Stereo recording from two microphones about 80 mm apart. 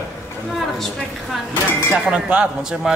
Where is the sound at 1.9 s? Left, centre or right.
Centre.